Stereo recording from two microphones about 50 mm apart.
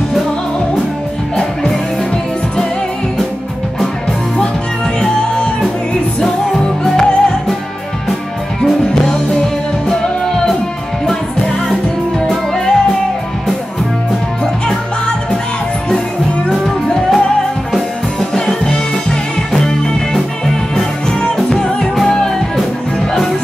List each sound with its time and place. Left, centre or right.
1.3 s music: centre
5.0 s music: centre
6.8 s music: centre
8.8 s music: centre
12.3 s music: centre
16.4 s music: centre
18.3 s music: centre